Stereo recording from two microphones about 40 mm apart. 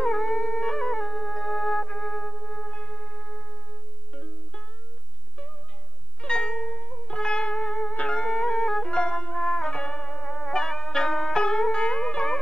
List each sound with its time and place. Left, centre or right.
0.0 s howl: centre
4.1 s music: left
6.2 s music: left
8.2 s music: left